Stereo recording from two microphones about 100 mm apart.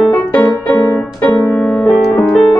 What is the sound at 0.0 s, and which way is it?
Music, 10° left (ahead or behind).